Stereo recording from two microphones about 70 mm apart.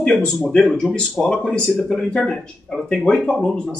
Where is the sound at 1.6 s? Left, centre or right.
Centre.